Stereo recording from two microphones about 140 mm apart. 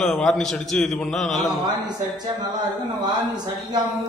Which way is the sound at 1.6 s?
30° right (ahead or behind).